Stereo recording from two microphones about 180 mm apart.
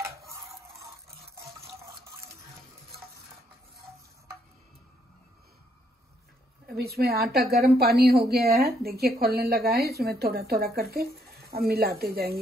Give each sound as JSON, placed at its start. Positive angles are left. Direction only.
{"t": 6.7, "sound": "a woman's voice", "side_deg": -60}